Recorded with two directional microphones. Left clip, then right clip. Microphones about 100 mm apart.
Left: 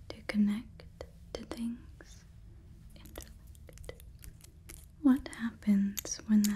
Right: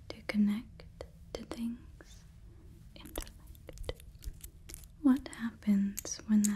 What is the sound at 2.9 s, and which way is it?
Chewing, 50° right (ahead or behind).